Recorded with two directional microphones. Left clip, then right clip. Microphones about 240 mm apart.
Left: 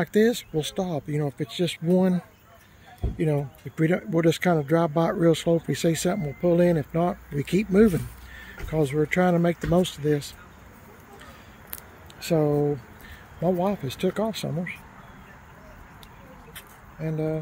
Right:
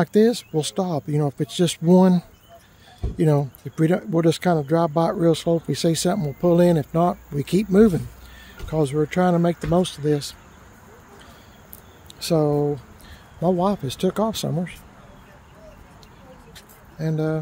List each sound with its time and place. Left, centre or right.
0.0 s speech: centre
3.7 s speech: centre
12.2 s speech: centre
17.0 s speech: right